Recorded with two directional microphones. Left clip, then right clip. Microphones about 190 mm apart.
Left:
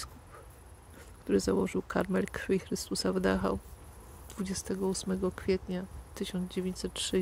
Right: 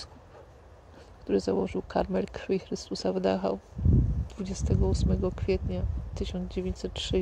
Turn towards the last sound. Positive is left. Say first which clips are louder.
# right 2 dB
turn(degrees=15)  # may be behind; listen again after turning